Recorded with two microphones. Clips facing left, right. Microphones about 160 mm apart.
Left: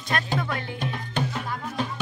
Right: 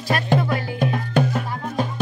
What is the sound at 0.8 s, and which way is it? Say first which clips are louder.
Music: right 11 dB; 50° right (ahead or behind).